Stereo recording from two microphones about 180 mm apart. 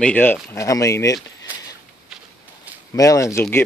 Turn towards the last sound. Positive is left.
turn(degrees=15)  # may be behind; listen again after turning